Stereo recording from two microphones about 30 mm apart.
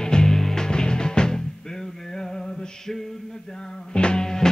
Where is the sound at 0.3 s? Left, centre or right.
Centre.